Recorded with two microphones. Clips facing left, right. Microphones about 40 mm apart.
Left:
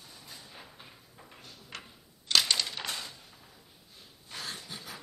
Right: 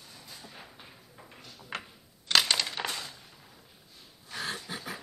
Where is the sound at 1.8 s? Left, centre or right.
Centre.